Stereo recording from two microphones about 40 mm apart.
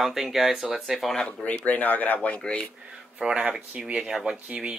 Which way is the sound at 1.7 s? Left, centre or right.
Left.